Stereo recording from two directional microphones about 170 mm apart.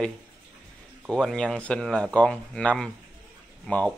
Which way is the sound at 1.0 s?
Centre (ahead or behind).